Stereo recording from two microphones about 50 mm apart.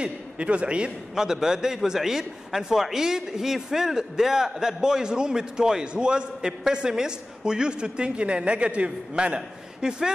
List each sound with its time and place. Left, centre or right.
0.0 s a man's voice: right
1.1 s a man's voice: centre